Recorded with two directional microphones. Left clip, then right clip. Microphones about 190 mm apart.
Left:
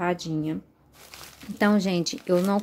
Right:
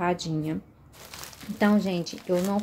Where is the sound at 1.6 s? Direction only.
30° left (ahead or behind).